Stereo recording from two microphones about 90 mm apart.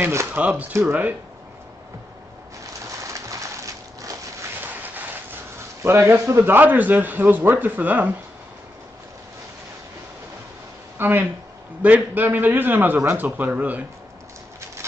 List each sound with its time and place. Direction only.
0.0 s a man's voice: 30° right (ahead or behind)
0.4 s a man's voice: 15° right (ahead or behind)
3.0 s a sound: 35° right (ahead or behind)
6.1 s a man's voice: 30° right (ahead or behind)
11.0 s a man's voice: 25° right (ahead or behind)